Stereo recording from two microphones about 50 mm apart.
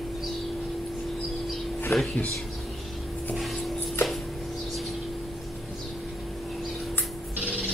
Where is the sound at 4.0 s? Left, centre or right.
Left.